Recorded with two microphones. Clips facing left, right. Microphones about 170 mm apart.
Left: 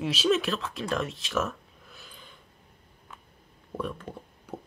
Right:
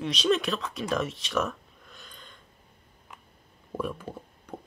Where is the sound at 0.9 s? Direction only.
Centre (ahead or behind).